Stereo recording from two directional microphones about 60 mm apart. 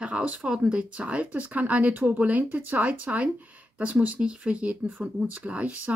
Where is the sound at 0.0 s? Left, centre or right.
Right.